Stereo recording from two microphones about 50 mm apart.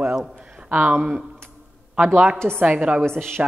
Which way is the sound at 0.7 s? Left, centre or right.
Right.